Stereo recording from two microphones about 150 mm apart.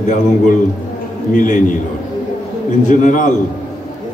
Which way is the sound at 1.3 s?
60° left (ahead or behind).